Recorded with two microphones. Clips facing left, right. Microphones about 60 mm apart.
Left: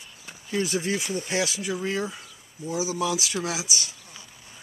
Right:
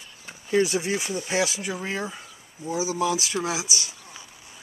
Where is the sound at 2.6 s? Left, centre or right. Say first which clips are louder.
Right 2 dB; right.